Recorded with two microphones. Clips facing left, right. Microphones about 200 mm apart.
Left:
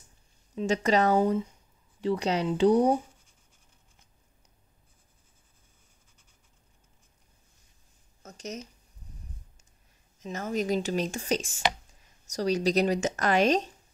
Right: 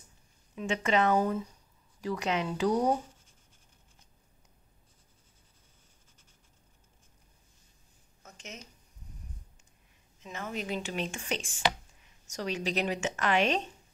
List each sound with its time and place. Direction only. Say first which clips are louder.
0.6 s a woman's voice: left 4 dB; 35° left (ahead or behind)
1.2 s a woman's voice: left 5 dB; 25° left (ahead or behind)
8.2 s a sound: left 9 dB; 40° left (ahead or behind)
10.2 s a woman's voice: left 7 dB; 40° left (ahead or behind)